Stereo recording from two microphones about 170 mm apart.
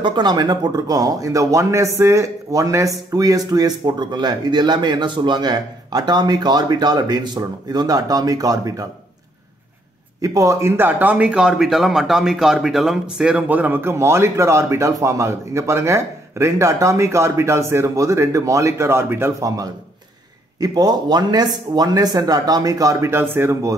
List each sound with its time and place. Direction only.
0.0 s speech: 25° right (ahead or behind)
10.2 s speech: 20° right (ahead or behind)